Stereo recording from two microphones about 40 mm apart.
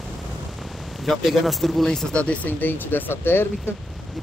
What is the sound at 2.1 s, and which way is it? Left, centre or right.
Speech, left.